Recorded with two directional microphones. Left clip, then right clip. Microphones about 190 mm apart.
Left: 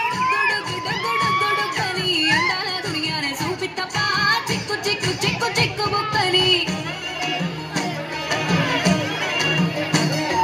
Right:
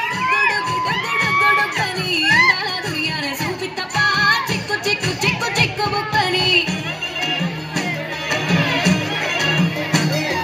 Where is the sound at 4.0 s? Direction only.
30° right (ahead or behind).